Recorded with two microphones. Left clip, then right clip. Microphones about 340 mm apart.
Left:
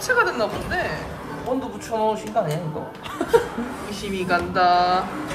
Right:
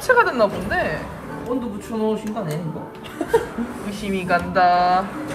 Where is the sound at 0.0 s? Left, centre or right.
Centre.